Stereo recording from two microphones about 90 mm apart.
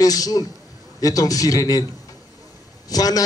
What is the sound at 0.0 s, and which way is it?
A man's voice, 45° left (ahead or behind).